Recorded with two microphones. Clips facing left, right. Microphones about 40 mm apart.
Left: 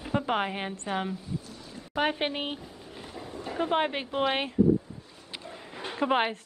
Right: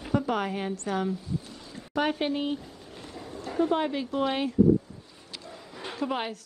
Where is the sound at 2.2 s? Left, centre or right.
Left.